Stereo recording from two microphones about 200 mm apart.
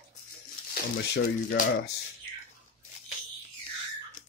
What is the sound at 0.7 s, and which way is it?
Speech, 50° left (ahead or behind).